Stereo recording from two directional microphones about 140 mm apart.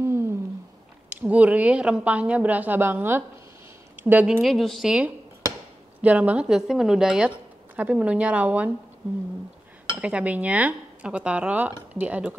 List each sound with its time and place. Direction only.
0.0 s humming: 15° right (ahead or behind)
1.2 s speech: 10° right (ahead or behind)
4.4 s a woman's voice: centre (ahead or behind)
9.9 s speech: 10° right (ahead or behind)